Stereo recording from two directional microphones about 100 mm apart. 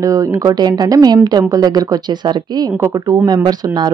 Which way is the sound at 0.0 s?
35° right (ahead or behind).